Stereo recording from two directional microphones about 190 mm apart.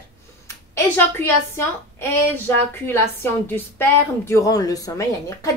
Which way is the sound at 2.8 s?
10° left (ahead or behind).